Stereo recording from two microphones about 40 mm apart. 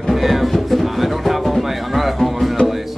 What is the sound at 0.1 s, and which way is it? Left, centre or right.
Music, centre.